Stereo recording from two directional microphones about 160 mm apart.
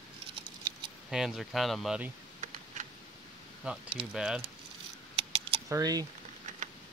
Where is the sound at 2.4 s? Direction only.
50° right (ahead or behind).